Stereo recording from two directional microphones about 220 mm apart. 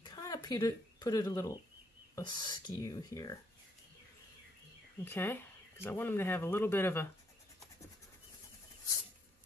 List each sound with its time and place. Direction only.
0.0 s a sound: 15° left (ahead or behind)
2.1 s speech: 20° left (ahead or behind)
5.0 s speech: 10° left (ahead or behind)